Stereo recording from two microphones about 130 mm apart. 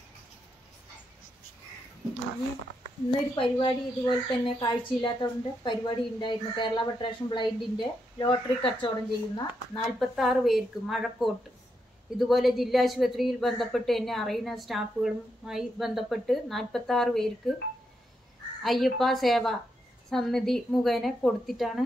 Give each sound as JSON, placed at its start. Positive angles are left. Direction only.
{"t": 3.1, "sound": "speech", "side_deg": 40}
{"t": 9.8, "sound": "a woman's voice", "side_deg": 0}
{"t": 18.6, "sound": "a woman's voice", "side_deg": 0}